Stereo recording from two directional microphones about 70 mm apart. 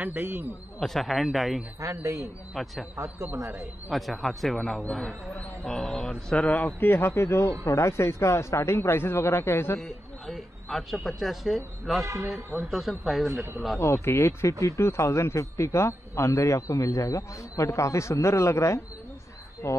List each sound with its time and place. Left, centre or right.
0.0 s a man's voice: right
0.7 s speech: centre
1.8 s a man's voice: right
2.5 s speech: centre
3.3 s a man's voice: right
3.9 s speech: centre
6.8 s speech: left
9.8 s speech: centre
13.3 s a man's voice: right
13.7 s a man's voice: left